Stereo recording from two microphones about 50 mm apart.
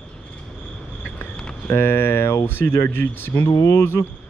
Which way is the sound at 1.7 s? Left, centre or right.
Left.